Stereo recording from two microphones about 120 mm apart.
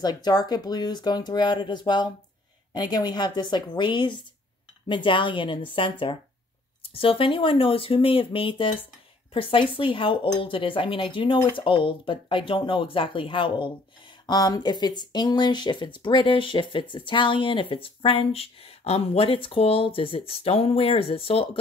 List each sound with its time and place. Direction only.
0.0 s speech: 35° left (ahead or behind)
14.2 s speech: 35° left (ahead or behind); by 21.5 s 50° left (ahead or behind)